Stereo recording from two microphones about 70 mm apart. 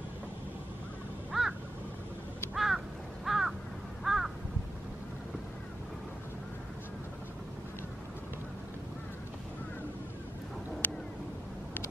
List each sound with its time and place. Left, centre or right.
1.3 s crow: centre
2.5 s crow: centre
10.8 s a sound: left